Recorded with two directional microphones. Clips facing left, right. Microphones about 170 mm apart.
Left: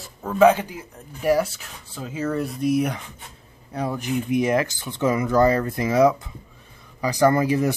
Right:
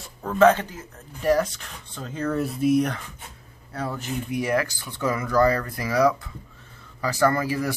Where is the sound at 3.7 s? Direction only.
15° left (ahead or behind).